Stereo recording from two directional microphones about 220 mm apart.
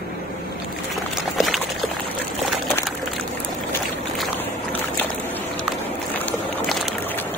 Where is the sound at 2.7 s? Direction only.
Centre (ahead or behind).